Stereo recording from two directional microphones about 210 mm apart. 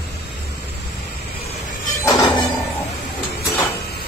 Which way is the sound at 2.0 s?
15° left (ahead or behind).